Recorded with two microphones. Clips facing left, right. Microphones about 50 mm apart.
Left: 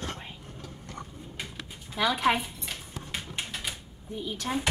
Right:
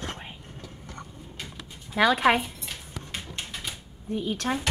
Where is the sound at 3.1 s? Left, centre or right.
Centre.